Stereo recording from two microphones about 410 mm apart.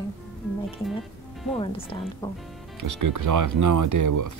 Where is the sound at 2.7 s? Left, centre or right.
Right.